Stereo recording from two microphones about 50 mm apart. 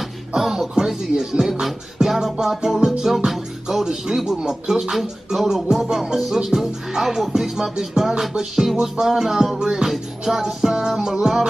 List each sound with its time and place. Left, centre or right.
0.3 s speech: centre